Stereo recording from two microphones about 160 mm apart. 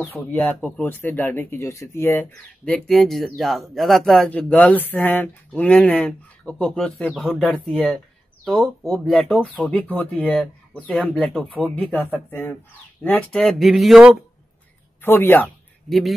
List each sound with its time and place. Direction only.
0.0 s a man's voice: 10° left (ahead or behind)
15.0 s speech: 15° left (ahead or behind)
15.4 s a sound: centre (ahead or behind)